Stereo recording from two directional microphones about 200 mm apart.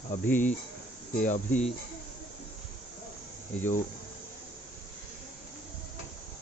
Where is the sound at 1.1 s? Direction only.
40° left (ahead or behind).